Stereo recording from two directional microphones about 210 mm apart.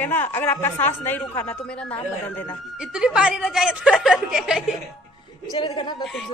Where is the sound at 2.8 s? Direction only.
5° right (ahead or behind).